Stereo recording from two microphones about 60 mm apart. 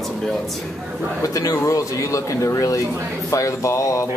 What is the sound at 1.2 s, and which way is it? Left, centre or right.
Speech, left.